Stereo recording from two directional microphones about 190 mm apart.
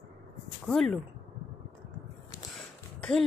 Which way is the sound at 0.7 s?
5° left (ahead or behind).